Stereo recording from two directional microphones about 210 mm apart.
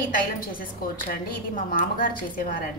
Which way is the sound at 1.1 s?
40° left (ahead or behind).